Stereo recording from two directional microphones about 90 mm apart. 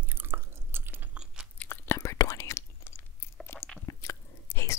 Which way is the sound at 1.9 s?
30° left (ahead or behind).